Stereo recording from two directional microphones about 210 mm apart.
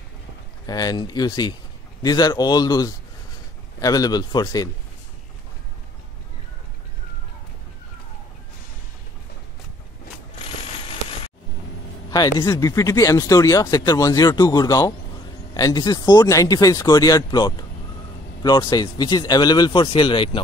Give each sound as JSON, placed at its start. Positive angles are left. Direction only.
{"t": 0.7, "sound": "speech", "side_deg": 20}
{"t": 12.1, "sound": "speech", "side_deg": 20}